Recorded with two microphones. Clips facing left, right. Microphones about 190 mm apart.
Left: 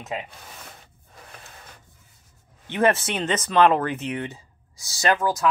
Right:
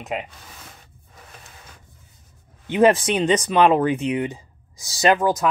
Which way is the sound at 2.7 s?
15° right (ahead or behind).